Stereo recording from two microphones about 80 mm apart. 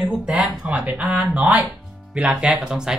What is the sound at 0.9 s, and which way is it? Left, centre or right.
Speech, centre.